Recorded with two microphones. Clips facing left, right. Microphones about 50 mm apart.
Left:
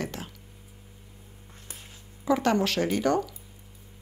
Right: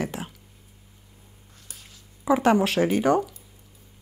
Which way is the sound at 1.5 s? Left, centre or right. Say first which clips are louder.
Left 2 dB; left.